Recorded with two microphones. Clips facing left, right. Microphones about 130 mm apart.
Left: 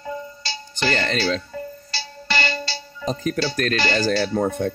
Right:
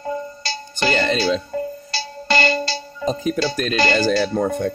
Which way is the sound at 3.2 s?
15° right (ahead or behind).